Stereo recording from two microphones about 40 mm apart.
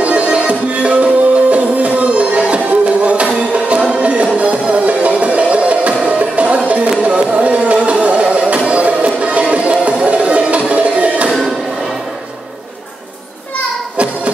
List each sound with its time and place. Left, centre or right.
0.0 s music: right